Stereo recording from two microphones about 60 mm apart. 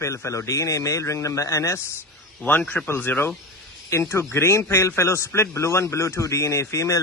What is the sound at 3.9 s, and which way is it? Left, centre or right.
A man's voice, left.